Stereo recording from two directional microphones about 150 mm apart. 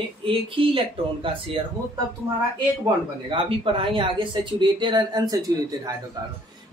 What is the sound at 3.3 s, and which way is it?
Speech, 35° right (ahead or behind).